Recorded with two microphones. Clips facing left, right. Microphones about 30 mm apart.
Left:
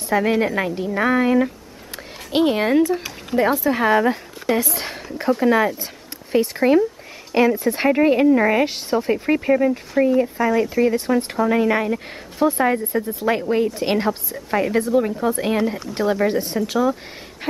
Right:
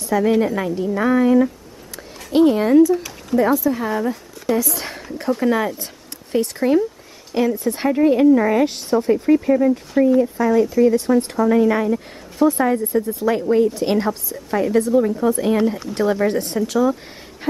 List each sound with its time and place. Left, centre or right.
0.0 s a woman's voice: left
4.8 s a woman's voice: centre
9.0 s a woman's voice: left
12.7 s speech: left
13.2 s a woman's voice: left
15.5 s speech: centre